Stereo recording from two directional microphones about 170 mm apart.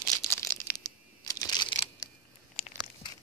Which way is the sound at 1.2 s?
20° left (ahead or behind).